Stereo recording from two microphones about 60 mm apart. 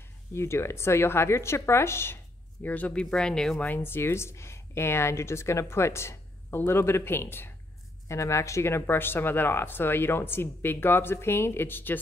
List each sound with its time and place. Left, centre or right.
0.3 s speech: left
2.6 s speech: left
3.5 s speech: left
8.1 s speech: left